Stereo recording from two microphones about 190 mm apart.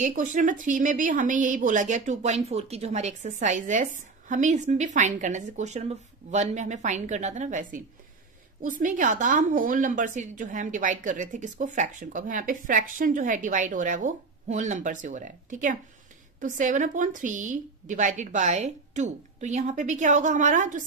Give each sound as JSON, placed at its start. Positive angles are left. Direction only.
{"t": 0.0, "sound": "a woman's voice", "side_deg": -45}